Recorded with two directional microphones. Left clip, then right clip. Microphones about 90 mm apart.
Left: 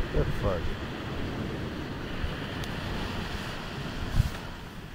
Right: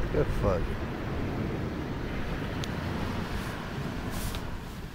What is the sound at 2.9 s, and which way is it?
Vehicle, 15° left (ahead or behind).